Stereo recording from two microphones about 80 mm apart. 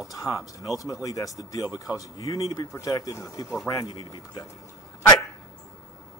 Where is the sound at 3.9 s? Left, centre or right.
Left.